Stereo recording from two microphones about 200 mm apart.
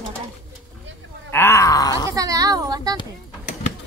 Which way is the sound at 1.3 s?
10° left (ahead or behind).